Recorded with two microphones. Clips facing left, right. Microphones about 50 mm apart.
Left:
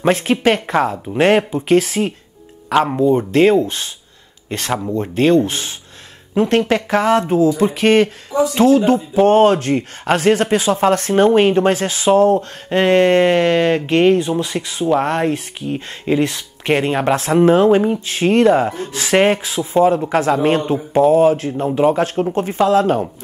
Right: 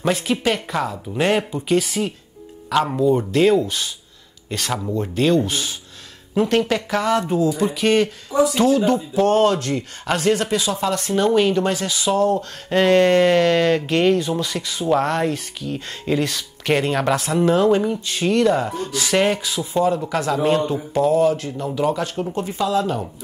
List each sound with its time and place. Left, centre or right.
0.0 s speech: left
2.9 s speech: left
3.3 s speech: left
20.7 s speech: left